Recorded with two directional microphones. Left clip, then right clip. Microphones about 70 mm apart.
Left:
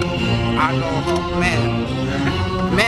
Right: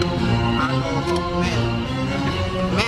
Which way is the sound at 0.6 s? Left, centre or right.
Left.